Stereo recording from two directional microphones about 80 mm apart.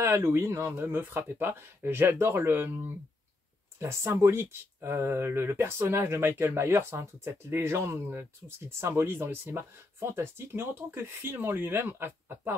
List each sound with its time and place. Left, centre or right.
0.0 s speech: right
3.8 s speech: right